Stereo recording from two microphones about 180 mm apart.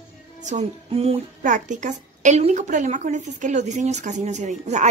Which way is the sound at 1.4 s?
45° right (ahead or behind).